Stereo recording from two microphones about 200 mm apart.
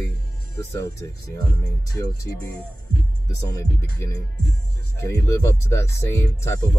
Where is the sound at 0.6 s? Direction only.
15° left (ahead or behind).